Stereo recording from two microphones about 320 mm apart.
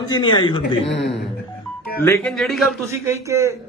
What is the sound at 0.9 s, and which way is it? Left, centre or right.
Speech, left.